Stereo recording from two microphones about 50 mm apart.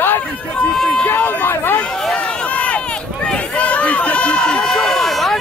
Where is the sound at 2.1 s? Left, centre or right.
Left; by 5.4 s centre.